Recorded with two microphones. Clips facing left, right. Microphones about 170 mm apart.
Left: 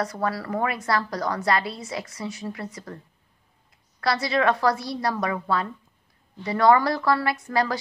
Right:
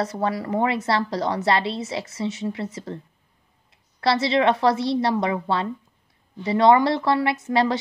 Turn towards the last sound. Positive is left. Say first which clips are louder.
# right 3 dB
turn(degrees=-25)  # may be behind; listen again after turning